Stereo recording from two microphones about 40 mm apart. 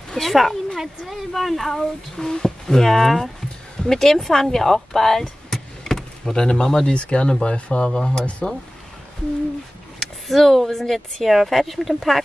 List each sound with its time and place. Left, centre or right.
0.1 s speech: centre; by 7.8 s left
7.8 s speech: centre
9.9 s speech: centre